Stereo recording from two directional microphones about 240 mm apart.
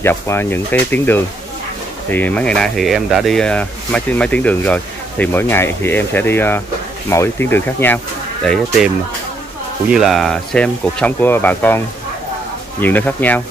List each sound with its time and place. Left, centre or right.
0.0 s speech: centre
9.8 s speech: centre
12.8 s speech: centre